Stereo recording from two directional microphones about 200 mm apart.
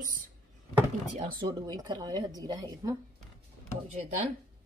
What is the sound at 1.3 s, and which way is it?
A woman's voice, 20° right (ahead or behind).